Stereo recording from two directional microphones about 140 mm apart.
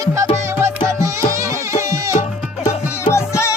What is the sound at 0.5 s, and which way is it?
Music, 20° right (ahead or behind).